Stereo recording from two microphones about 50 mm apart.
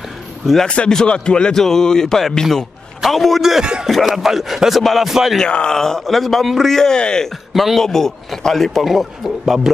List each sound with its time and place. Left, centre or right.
0.7 s speech: left
1.5 s a man's voice: centre
5.4 s a man's voice: centre
7.5 s a man's voice: centre